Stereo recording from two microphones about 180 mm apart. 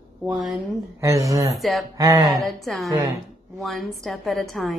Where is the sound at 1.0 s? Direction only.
15° right (ahead or behind).